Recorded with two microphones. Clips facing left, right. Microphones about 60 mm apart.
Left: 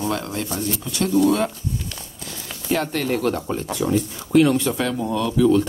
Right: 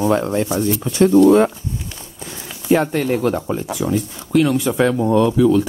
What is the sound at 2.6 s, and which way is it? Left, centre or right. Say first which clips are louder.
Speech: right 6 dB; centre.